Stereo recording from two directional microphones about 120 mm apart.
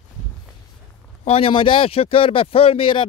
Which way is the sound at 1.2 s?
50° left (ahead or behind).